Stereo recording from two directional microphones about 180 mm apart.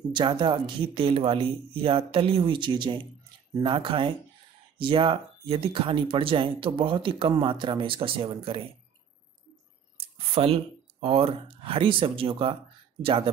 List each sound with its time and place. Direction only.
0.1 s speech: 25° right (ahead or behind)
9.9 s speech: 30° right (ahead or behind)